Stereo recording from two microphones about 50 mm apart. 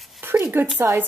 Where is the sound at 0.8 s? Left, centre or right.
Right.